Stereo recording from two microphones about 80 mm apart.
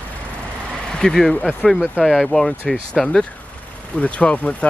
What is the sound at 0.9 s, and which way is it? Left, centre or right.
Speech, centre.